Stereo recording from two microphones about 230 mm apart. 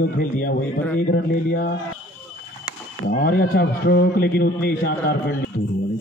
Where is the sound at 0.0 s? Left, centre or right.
Left.